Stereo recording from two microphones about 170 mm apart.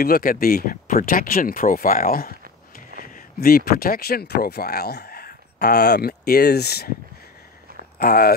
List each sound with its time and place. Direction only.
0.0 s speech: 60° left (ahead or behind)
8.0 s speech: 65° left (ahead or behind)